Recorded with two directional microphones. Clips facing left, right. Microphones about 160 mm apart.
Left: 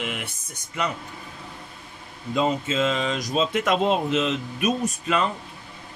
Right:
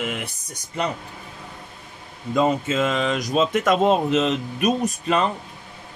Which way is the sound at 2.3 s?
50° right (ahead or behind).